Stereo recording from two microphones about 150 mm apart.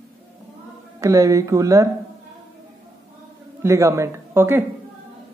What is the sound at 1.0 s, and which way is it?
Speech, 20° right (ahead or behind).